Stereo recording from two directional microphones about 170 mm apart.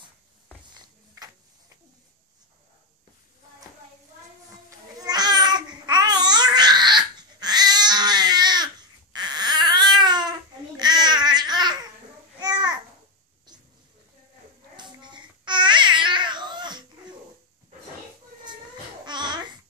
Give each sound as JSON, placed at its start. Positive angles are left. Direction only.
{"t": 4.6, "sound": "babbling", "side_deg": -25}
{"t": 9.1, "sound": "baby cry", "side_deg": -25}
{"t": 10.8, "sound": "babbling", "side_deg": -25}
{"t": 13.5, "sound": "pig", "side_deg": -25}
{"t": 14.8, "sound": "babbling", "side_deg": -25}
{"t": 19.0, "sound": "babbling", "side_deg": -25}